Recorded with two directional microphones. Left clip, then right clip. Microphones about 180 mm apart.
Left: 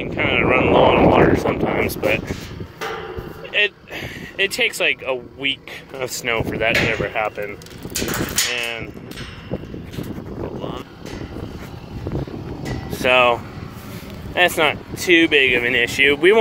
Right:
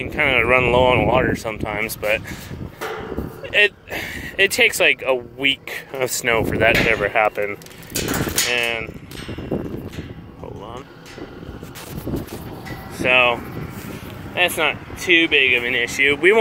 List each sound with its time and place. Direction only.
0.1 s speech: 45° right (ahead or behind)
3.5 s speech: 45° right (ahead or behind)
13.0 s speech: 25° left (ahead or behind)